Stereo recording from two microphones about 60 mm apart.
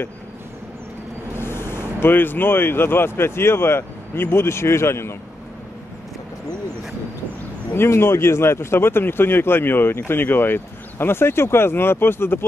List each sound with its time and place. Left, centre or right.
1.4 s speech: left
7.7 s speech: left